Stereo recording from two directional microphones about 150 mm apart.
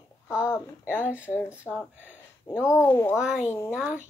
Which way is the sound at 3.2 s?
5° right (ahead or behind).